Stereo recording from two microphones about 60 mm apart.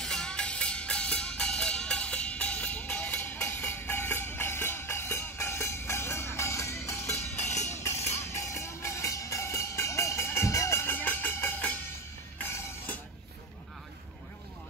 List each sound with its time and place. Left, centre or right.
0.0 s music: centre; by 10.9 s left
10.9 s music: left
12.4 s music: left